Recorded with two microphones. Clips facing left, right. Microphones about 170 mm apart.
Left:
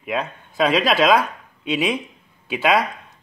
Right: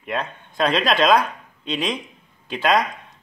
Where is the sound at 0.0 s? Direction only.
5° left (ahead or behind).